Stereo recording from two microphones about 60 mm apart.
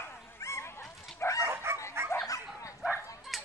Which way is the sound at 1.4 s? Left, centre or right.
Right.